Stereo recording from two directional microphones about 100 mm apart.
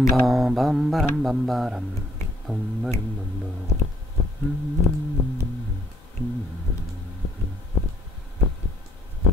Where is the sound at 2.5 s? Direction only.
15° right (ahead or behind).